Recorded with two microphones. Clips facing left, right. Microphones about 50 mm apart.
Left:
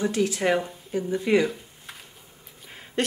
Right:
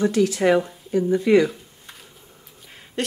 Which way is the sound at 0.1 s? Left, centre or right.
Left.